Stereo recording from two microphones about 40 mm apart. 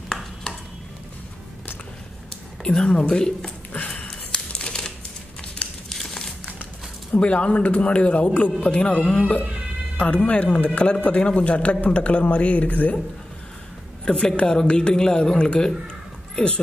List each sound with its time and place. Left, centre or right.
2.6 s a woman's voice: left
4.1 s typewriter: left
5.9 s crumpling: centre
7.1 s speech: left
14.0 s a woman's voice: centre